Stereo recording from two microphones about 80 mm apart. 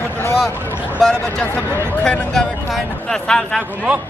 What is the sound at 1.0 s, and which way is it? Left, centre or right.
Speech, centre.